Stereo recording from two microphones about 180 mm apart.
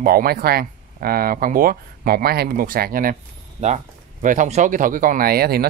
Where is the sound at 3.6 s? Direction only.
40° right (ahead or behind); by 5.6 s 60° right (ahead or behind).